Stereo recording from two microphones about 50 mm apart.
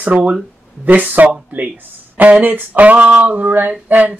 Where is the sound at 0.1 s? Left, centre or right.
Right.